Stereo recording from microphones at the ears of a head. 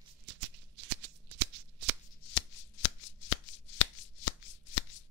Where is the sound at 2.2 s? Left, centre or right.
Left.